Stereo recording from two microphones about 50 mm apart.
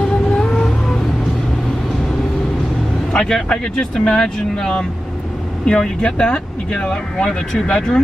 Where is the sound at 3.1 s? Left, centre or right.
Centre.